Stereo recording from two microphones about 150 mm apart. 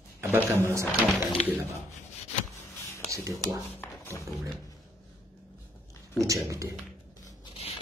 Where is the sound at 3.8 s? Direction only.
15° left (ahead or behind).